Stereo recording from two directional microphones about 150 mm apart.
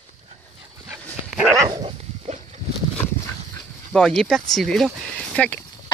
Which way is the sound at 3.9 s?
5° left (ahead or behind).